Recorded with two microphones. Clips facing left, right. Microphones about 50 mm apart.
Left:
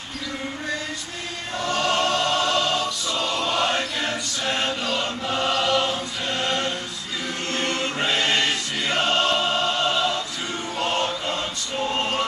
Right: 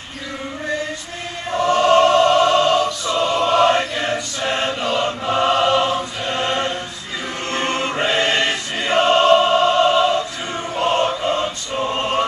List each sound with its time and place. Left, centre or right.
1.5 s choir: right